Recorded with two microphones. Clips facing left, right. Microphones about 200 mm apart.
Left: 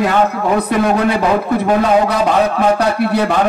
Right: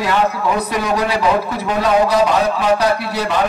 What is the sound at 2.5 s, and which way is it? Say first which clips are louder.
Speech: left 2 dB; 55° left (ahead or behind).